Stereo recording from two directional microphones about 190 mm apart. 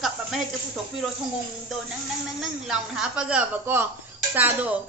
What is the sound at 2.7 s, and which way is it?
A child's voice, 5° right (ahead or behind).